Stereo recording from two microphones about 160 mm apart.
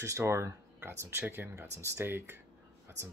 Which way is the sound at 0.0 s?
15° right (ahead or behind).